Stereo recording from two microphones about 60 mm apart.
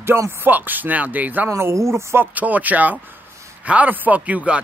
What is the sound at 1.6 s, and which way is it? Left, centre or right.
Speech, right.